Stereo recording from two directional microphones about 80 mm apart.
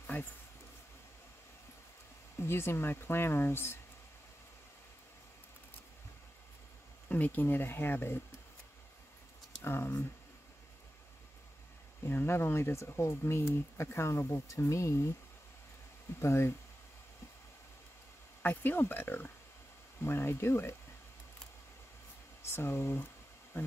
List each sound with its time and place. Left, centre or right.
0.0 s a sound: left
2.4 s speech: left
7.1 s speech: left
9.6 s speech: left
12.0 s speech: left
16.2 s speech: left
18.4 s speech: left
22.4 s speech: left